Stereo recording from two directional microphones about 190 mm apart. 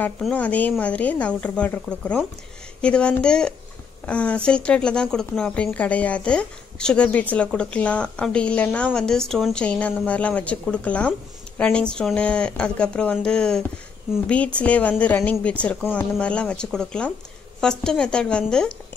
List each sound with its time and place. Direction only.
0.0 s a woman's voice: 5° left (ahead or behind)